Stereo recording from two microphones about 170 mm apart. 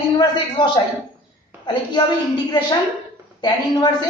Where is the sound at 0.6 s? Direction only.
30° left (ahead or behind).